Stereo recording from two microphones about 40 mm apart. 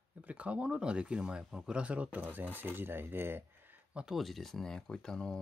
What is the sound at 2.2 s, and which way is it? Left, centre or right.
Speech, right.